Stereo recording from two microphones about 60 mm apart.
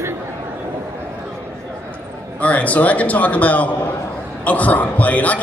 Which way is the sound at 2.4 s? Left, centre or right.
Left.